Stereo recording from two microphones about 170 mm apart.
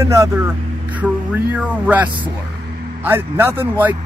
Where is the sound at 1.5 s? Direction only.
10° right (ahead or behind).